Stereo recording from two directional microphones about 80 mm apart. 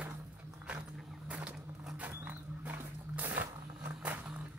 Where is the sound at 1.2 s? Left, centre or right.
Centre.